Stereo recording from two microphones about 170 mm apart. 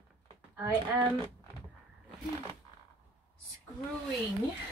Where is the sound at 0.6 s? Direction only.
15° right (ahead or behind).